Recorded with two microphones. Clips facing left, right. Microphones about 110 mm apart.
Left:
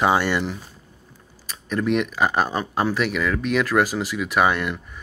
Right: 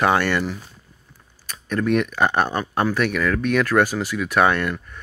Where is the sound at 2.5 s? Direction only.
20° left (ahead or behind).